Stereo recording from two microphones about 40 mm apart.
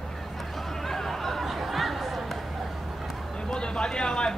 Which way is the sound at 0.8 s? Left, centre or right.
Centre.